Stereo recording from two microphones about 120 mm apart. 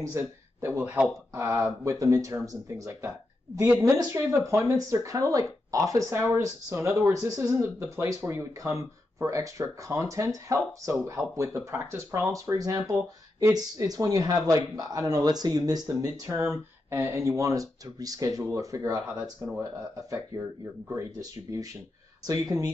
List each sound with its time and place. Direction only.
0.0 s speech: 20° right (ahead or behind)
19.0 s speech: 10° right (ahead or behind)
19.6 s speech: 25° right (ahead or behind)